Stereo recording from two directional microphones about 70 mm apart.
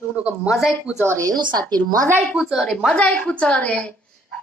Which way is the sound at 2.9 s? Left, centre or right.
Centre.